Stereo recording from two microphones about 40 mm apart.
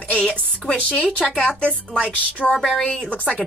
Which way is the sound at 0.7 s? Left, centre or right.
Left.